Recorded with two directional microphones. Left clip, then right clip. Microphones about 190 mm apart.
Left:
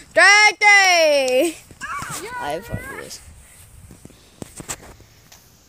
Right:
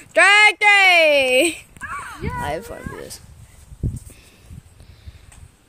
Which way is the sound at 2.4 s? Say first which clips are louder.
Right 1 dB; 5° right (ahead or behind).